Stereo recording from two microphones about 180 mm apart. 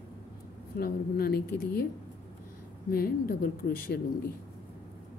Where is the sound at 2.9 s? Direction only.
60° left (ahead or behind).